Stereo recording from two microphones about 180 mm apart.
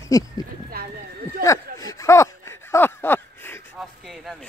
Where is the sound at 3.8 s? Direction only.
Centre (ahead or behind).